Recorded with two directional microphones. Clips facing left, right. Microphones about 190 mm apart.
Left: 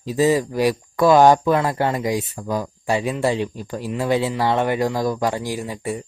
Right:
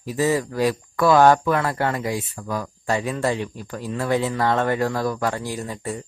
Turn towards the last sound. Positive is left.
turn(degrees=15)  # may be behind; listen again after turning